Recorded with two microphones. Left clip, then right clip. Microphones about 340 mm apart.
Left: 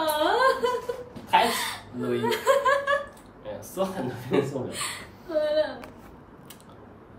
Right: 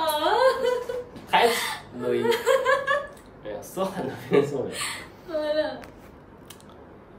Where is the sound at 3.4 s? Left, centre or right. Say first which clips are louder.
Even; centre.